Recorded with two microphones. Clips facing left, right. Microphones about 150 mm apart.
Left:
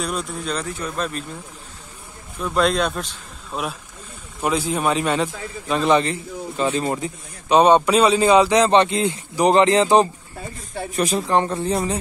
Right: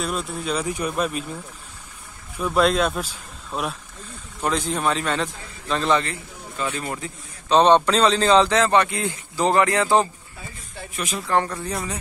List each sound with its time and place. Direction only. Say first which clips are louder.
0.0 s speech: left 1 dB; centre (ahead or behind)
2.3 s speech: even; 5° right (ahead or behind)
4.4 s speech: left 2 dB; 10° left (ahead or behind); by 7.1 s 25° left (ahead or behind)
7.4 s speech: left 2 dB; 10° left (ahead or behind)
11.0 s speech: left 8 dB; 35° left (ahead or behind)
11.2 s speech: left 3 dB; 20° left (ahead or behind)